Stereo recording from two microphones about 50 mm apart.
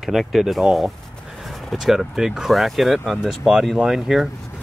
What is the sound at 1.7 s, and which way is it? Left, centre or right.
Speech, centre.